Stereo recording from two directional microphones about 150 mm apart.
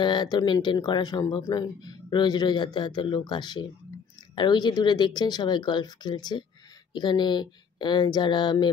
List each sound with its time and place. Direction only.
0.0 s speech: 30° left (ahead or behind)